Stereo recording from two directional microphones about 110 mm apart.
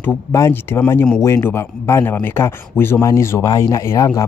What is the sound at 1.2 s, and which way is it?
Speech, 25° left (ahead or behind).